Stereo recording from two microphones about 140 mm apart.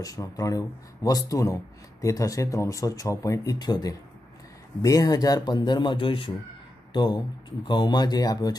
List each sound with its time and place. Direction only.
0.0 s speech: 25° left (ahead or behind)